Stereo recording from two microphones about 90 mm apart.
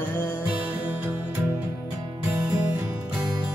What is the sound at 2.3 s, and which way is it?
Music, 25° right (ahead or behind).